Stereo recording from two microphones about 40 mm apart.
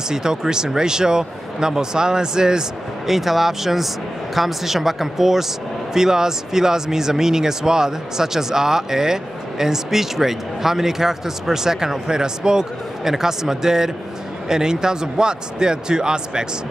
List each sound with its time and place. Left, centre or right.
0.1 s speech: centre
3.1 s speech: centre